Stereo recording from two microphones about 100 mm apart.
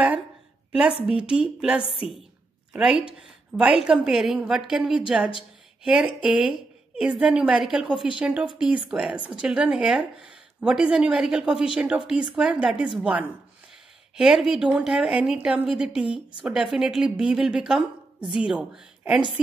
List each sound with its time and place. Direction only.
0.7 s a woman's voice: 10° right (ahead or behind)
1.8 s a woman's voice: 65° left (ahead or behind)
2.7 s a woman's voice: 10° right (ahead or behind)